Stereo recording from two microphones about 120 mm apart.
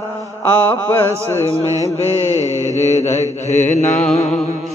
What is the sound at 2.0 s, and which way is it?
Mantra, 65° left (ahead or behind).